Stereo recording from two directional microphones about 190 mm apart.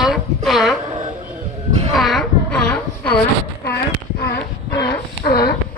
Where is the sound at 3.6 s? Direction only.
60° left (ahead or behind).